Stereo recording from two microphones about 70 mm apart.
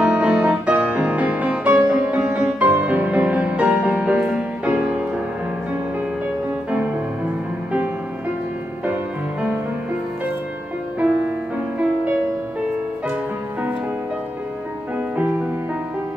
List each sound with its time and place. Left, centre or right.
0.0 s music: centre
2.2 s music: right
2.6 s music: centre
11.0 s music: centre
15.1 s music: right